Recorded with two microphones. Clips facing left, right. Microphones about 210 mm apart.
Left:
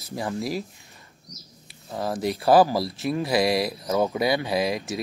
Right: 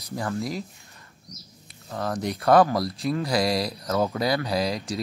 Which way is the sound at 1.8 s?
20° left (ahead or behind).